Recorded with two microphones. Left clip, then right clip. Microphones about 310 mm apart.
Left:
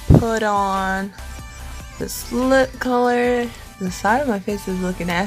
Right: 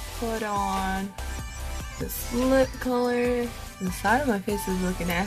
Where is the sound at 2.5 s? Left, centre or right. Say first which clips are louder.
Left 7 dB; left.